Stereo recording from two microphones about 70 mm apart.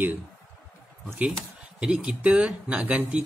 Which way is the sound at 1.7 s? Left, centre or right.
Centre.